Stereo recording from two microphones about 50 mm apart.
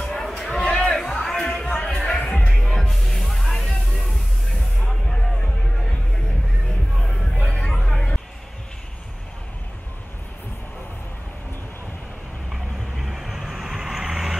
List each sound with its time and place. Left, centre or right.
0.0 s music: centre
1.5 s a sound: centre
1.8 s music: centre
2.1 s music: left
2.6 s music: centre
7.3 s music: left
7.8 s music: centre
12.5 s vehicle: centre